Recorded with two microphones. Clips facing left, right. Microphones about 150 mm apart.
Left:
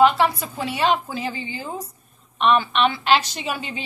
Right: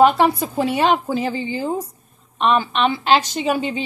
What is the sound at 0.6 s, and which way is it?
A woman's voice, 35° right (ahead or behind).